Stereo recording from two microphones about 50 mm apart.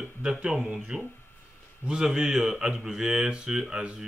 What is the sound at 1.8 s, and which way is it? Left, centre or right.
Mantra, centre.